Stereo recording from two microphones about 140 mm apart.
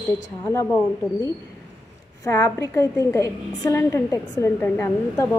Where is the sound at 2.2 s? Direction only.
20° left (ahead or behind).